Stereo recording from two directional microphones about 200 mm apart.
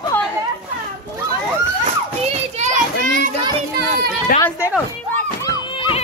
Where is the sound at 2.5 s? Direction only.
40° right (ahead or behind).